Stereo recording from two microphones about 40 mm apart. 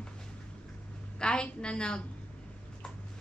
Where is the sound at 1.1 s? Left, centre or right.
Left.